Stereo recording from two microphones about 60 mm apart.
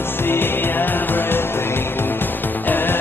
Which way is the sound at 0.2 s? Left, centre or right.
Left.